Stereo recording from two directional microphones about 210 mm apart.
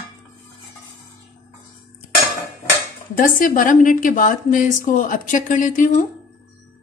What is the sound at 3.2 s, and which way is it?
A woman's voice, 40° left (ahead or behind).